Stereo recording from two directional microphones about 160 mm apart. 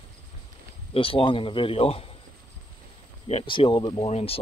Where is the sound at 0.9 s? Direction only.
35° left (ahead or behind).